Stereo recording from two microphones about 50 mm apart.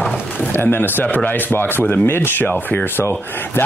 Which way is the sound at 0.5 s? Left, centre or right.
Left.